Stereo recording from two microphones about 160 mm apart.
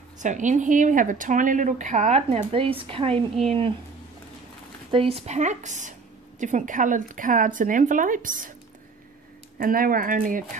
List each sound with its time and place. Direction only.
0.2 s speech: 50° right (ahead or behind); by 3.3 s 35° right (ahead or behind)
4.9 s speech: 40° right (ahead or behind); by 8.5 s 55° right (ahead or behind)
9.6 s speech: 65° right (ahead or behind)